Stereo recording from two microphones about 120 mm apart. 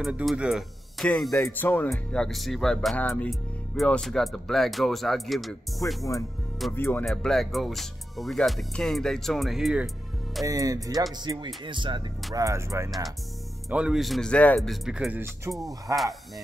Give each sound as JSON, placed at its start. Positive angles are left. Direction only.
{"t": 0.0, "sound": "speech", "side_deg": 0}
{"t": 1.5, "sound": "speech", "side_deg": 15}
{"t": 3.0, "sound": "speech", "side_deg": 10}
{"t": 6.7, "sound": "speech", "side_deg": 15}
{"t": 7.1, "sound": "speech", "side_deg": 5}
{"t": 10.4, "sound": "speech", "side_deg": -30}
{"t": 11.1, "sound": "music", "side_deg": -40}
{"t": 12.4, "sound": "speech", "side_deg": -25}
{"t": 13.7, "sound": "speech", "side_deg": -10}
{"t": 14.7, "sound": "speech", "side_deg": -5}
{"t": 15.5, "sound": "speech", "side_deg": -20}